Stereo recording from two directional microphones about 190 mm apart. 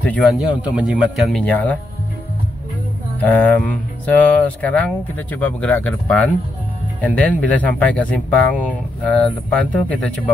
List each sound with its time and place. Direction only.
0.0 s speech: 5° left (ahead or behind)
0.6 s speech: 5° right (ahead or behind)
3.2 s speech: 10° left (ahead or behind)